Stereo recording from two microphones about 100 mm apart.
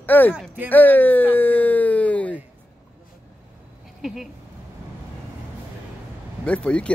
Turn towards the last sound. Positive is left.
turn(degrees=10)  # may be behind; listen again after turning